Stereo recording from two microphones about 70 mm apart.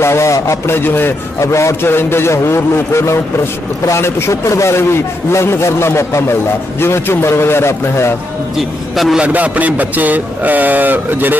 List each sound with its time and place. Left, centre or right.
0.0 s a man's voice: left
0.7 s a man's voice: left
8.5 s a man's voice: centre
9.2 s speech: right